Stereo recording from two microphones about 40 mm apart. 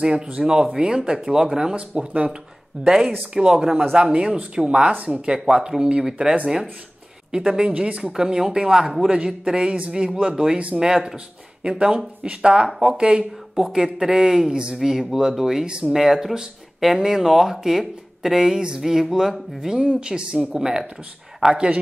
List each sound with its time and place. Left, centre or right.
0.4 s a man's voice: centre
1.8 s a man's voice: right
2.8 s a man's voice: centre
7.3 s a man's voice: centre
8.0 s speech: centre
9.2 s a man's voice: right
11.7 s a man's voice: right
14.8 s speech: centre
15.6 s a man's voice: right
15.9 s speech: centre
19.7 s a man's voice: right